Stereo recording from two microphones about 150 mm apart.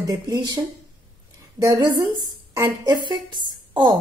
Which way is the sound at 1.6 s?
25° right (ahead or behind).